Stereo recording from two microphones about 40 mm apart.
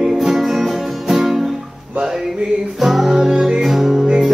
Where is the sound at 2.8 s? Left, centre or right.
Centre.